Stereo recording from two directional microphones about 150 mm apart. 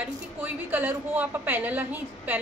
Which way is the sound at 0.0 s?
10° right (ahead or behind).